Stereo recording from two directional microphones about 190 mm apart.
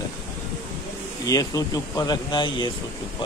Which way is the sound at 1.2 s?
20° left (ahead or behind).